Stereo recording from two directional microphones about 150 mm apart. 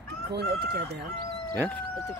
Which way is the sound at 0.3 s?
90° right.